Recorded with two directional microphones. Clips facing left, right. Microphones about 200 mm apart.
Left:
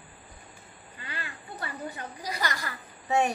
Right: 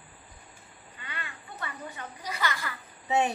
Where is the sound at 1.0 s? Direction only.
35° left (ahead or behind).